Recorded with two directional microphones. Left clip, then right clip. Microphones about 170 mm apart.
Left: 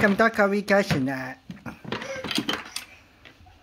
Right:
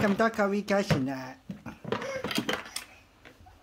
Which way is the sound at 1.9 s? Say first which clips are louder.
Left 1 dB; 55° right (ahead or behind).